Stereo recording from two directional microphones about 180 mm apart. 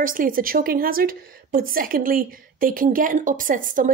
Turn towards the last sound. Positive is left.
turn(degrees=-45)  # may be behind; listen again after turning